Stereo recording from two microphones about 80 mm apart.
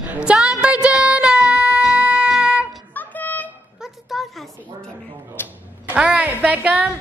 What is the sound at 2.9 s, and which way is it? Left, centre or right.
Music, left.